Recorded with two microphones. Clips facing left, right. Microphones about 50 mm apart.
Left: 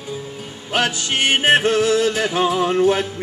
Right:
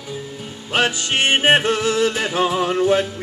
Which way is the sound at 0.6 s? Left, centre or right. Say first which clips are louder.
Right 1 dB; right.